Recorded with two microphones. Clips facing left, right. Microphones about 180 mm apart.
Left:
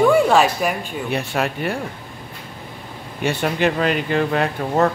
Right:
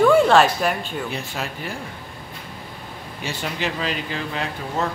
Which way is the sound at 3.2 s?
60° left (ahead or behind).